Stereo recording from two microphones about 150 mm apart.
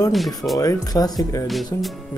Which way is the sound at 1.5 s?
Centre (ahead or behind).